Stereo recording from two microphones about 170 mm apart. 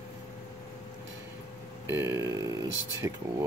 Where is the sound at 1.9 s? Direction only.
15° right (ahead or behind).